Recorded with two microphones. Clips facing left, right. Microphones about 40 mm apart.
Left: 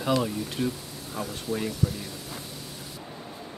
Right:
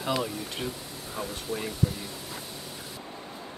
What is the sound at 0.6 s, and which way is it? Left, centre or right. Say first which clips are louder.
Speech: left 5 dB; right.